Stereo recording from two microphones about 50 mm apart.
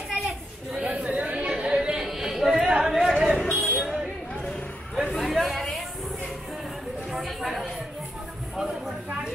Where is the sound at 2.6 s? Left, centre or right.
Centre.